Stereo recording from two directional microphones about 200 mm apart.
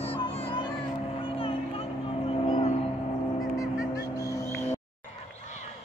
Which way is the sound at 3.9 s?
15° left (ahead or behind).